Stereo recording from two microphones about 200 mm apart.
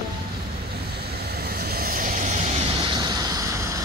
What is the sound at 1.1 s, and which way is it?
Vehicle, 55° right (ahead or behind).